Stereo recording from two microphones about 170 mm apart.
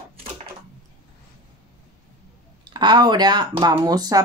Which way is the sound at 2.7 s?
25° right (ahead or behind).